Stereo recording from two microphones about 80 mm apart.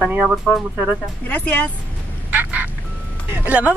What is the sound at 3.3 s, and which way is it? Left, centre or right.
Speech, right.